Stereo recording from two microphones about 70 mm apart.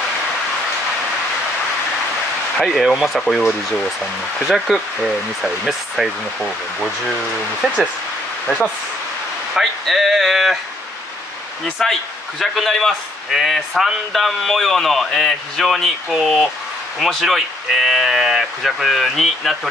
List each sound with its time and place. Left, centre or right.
2.5 s a man's voice: centre
7.6 s speech: centre
9.6 s a man's voice: centre
11.8 s a man's voice: centre